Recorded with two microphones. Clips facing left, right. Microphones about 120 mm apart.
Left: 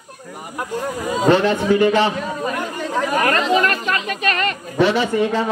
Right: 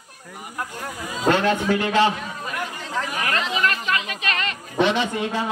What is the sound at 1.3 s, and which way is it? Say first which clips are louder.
Speech: left 4 dB; 15° left (ahead or behind).